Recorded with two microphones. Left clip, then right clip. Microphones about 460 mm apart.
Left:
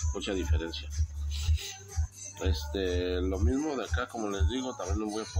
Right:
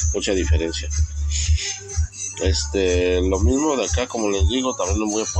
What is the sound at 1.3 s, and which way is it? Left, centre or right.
Music, left.